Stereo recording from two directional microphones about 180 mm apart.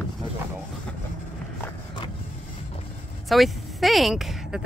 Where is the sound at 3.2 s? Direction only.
Centre (ahead or behind).